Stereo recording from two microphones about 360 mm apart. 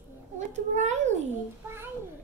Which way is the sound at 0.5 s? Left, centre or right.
Centre.